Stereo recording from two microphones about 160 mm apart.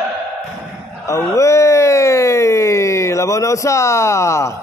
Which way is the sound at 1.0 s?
20° left (ahead or behind).